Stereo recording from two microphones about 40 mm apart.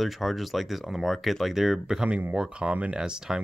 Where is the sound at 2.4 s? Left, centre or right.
Right.